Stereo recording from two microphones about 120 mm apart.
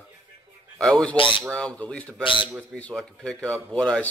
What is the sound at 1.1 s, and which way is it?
Speech, 45° left (ahead or behind).